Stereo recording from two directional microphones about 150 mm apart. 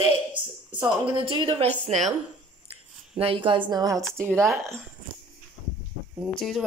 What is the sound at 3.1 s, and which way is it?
Speech, 40° right (ahead or behind).